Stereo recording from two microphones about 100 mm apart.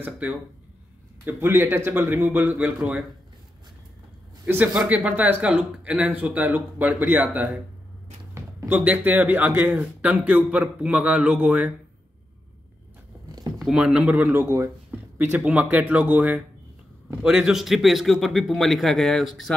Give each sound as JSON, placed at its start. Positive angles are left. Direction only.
{"t": 0.0, "sound": "a man's voice", "side_deg": -15}
{"t": 4.7, "sound": "speech", "side_deg": -15}
{"t": 8.6, "sound": "speech", "side_deg": -15}
{"t": 13.6, "sound": "speech", "side_deg": -5}
{"t": 14.4, "sound": "speech", "side_deg": -30}
{"t": 15.1, "sound": "a man's voice", "side_deg": -15}